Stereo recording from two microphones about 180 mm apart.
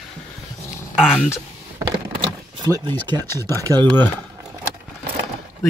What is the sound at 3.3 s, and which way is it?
Speech, 15° left (ahead or behind).